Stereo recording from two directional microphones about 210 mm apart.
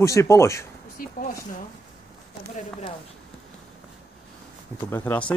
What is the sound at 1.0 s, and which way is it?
Speech, 40° left (ahead or behind).